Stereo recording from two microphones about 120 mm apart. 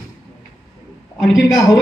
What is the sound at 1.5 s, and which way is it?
Speech, 30° left (ahead or behind).